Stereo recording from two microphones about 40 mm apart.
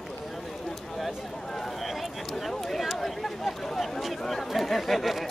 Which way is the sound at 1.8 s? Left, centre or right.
Centre.